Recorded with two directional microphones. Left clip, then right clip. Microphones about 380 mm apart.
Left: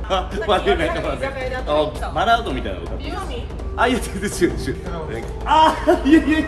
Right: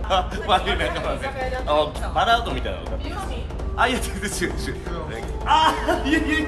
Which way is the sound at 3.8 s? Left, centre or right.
Centre.